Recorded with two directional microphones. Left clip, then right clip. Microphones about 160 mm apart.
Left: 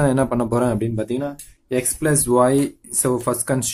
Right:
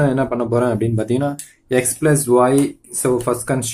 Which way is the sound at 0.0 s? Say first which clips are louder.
Right 1 dB; 30° left (ahead or behind).